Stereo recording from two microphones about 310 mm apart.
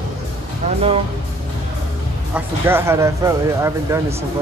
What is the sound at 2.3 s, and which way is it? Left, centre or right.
Speech, centre.